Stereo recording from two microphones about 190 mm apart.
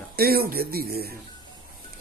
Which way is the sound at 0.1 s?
55° right (ahead or behind).